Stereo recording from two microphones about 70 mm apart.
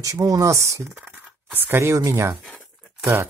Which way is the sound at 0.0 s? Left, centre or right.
Right.